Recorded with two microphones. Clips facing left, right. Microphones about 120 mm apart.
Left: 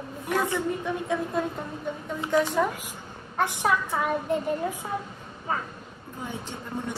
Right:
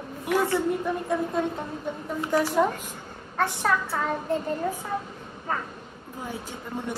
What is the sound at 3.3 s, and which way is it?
A woman's voice, 15° left (ahead or behind).